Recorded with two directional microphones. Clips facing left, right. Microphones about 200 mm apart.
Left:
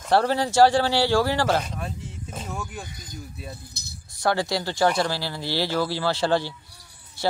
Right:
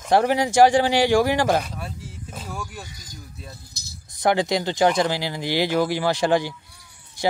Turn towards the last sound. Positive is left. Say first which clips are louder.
# right 2 dB
turn(degrees=-15)  # may be behind; listen again after turning